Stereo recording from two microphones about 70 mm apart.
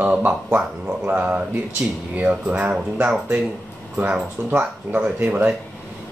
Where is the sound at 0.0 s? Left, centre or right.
Right.